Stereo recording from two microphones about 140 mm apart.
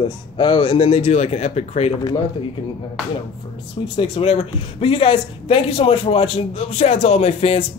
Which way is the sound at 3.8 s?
40° left (ahead or behind).